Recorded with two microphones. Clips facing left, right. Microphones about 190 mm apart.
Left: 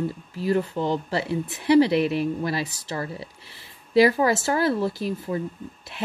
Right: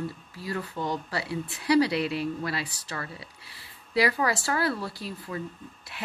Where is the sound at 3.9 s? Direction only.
25° left (ahead or behind).